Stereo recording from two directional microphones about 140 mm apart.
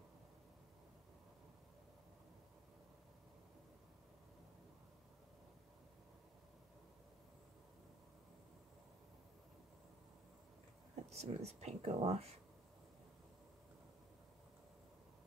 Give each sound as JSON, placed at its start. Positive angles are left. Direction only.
{"t": 11.1, "sound": "speech", "side_deg": -50}